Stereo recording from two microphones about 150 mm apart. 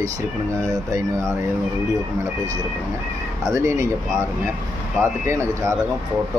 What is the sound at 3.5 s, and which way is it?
Speech, 15° right (ahead or behind).